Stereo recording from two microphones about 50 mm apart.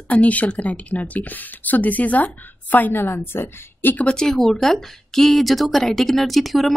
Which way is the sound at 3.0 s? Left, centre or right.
Left.